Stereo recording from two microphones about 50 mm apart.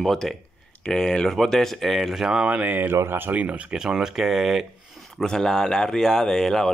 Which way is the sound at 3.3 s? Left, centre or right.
Right.